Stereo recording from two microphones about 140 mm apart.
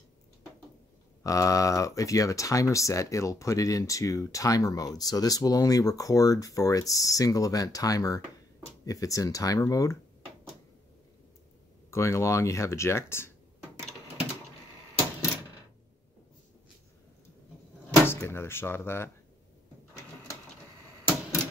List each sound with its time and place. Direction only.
1.2 s speech: 25° left (ahead or behind)
11.9 s speech: 20° left (ahead or behind)
18.0 s speech: 15° left (ahead or behind)